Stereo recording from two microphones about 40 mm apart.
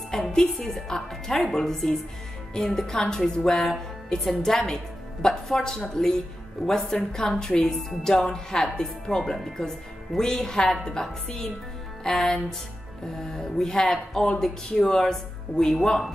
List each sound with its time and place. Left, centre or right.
0.2 s a woman's voice: centre